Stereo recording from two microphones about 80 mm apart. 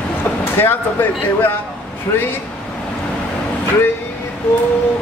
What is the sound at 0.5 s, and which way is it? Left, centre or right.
A man's voice, left.